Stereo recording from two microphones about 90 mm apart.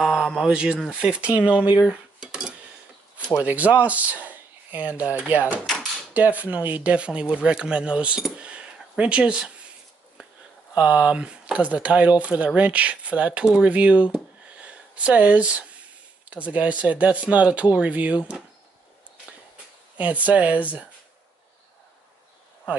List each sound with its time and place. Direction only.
0.0 s a sound: 5° right (ahead or behind)
0.4 s speech: 10° right (ahead or behind)
1.9 s cutlery: 5° right (ahead or behind)
3.4 s speech: 15° right (ahead or behind)
10.8 s speech: 15° right (ahead or behind)
20.0 s speech: 15° right (ahead or behind)